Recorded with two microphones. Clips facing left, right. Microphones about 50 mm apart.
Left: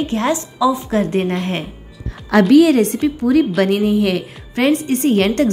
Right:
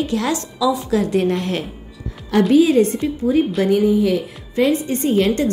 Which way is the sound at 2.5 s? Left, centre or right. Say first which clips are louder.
Left 2 dB; left.